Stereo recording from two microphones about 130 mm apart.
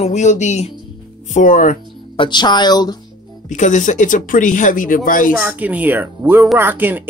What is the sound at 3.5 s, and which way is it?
Speech, 70° left (ahead or behind).